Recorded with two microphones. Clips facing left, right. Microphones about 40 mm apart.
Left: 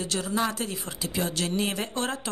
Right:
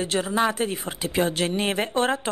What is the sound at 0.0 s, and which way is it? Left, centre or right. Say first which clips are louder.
A woman's voice: right 5 dB; right.